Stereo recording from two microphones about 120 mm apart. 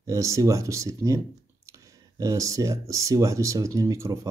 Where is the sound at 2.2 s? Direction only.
25° right (ahead or behind).